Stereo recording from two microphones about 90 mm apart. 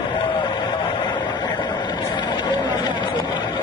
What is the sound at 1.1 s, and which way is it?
Vehicle, 50° left (ahead or behind).